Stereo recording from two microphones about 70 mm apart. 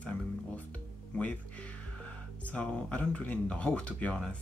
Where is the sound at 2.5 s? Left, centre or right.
Left.